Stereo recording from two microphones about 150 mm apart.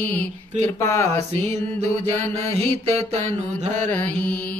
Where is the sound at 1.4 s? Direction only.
45° right (ahead or behind).